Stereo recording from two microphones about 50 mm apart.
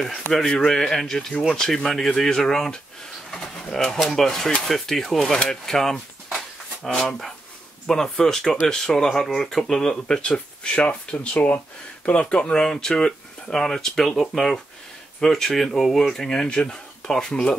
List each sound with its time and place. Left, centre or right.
0.3 s speech: centre
3.3 s pigeon: centre
3.7 s speech: centre
5.3 s speech: centre
12.6 s speech: centre
16.4 s speech: centre
17.1 s speech: centre